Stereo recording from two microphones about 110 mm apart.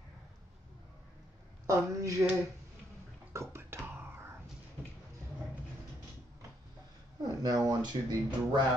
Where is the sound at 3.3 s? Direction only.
20° right (ahead or behind).